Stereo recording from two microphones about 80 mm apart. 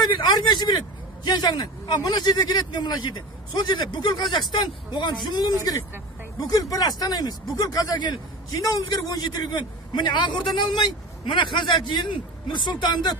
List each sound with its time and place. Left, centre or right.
0.0 s a man's voice: left
5.7 s a man's voice: left